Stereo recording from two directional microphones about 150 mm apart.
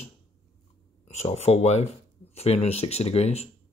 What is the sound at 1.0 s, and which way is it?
Speech, 45° left (ahead or behind).